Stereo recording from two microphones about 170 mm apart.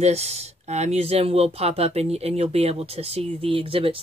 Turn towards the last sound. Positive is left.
turn(degrees=-35)  # may be behind; listen again after turning